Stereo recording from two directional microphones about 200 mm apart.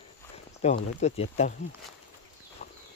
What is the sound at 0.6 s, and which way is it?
Speech, 35° left (ahead or behind).